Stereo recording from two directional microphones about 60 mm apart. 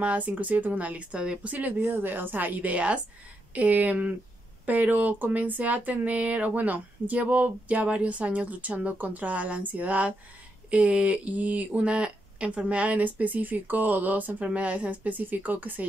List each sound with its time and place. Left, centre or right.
0.0 s speech: right